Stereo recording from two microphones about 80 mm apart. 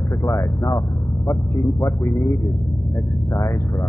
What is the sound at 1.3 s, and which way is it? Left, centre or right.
A man's voice, left.